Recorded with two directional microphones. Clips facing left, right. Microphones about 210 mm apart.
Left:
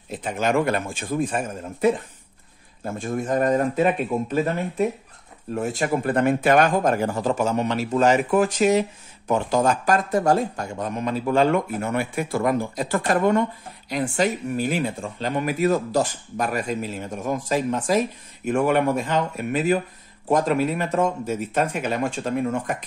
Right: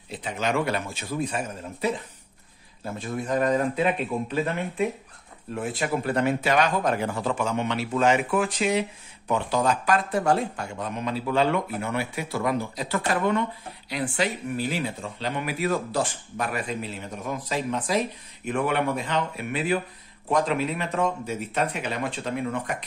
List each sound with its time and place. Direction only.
0.1 s speech: 50° left (ahead or behind)